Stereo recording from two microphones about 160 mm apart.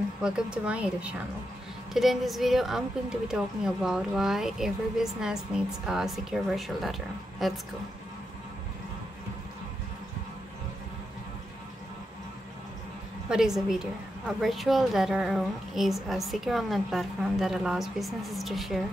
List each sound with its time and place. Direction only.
0.2 s a woman's voice: 5° right (ahead or behind)
13.3 s a woman's voice: 5° right (ahead or behind)